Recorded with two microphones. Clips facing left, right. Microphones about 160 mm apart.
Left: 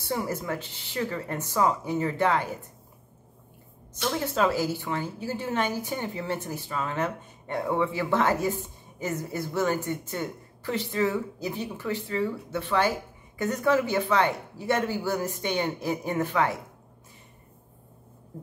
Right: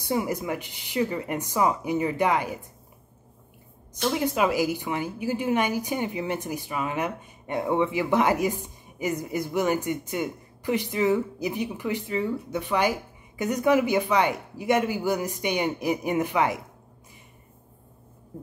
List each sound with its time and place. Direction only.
0.0 s a woman's voice: 15° right (ahead or behind)
3.9 s a woman's voice: 15° right (ahead or behind)